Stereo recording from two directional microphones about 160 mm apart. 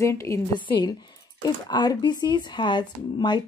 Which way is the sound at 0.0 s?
20° left (ahead or behind).